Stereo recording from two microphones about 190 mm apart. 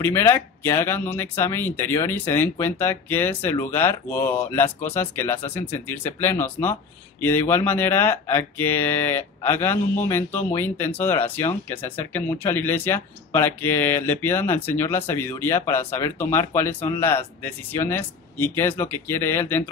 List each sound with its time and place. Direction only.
0.0 s speech: 15° left (ahead or behind)